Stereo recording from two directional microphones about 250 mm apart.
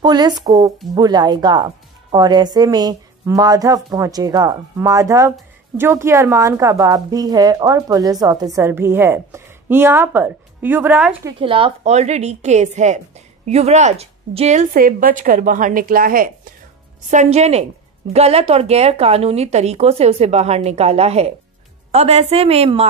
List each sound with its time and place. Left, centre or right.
0.0 s a woman's voice: centre
11.3 s a woman's voice: right